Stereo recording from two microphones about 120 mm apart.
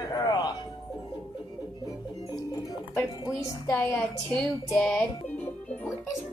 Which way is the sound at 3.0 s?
25° left (ahead or behind).